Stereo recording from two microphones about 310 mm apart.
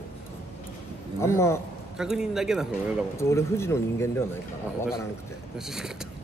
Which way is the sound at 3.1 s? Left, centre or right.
Centre.